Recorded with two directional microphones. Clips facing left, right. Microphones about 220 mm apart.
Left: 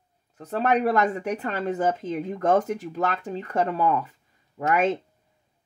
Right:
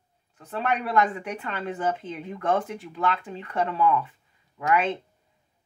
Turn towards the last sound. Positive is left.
turn(degrees=40)  # may be behind; listen again after turning